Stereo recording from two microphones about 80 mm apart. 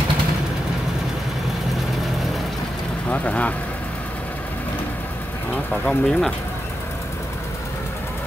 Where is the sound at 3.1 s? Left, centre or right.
Centre.